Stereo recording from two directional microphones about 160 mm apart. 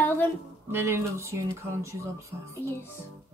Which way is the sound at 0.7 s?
15° right (ahead or behind).